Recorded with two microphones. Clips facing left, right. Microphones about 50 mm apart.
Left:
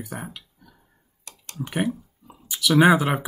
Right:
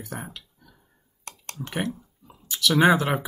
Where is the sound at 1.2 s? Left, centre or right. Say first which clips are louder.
Right 4 dB; right.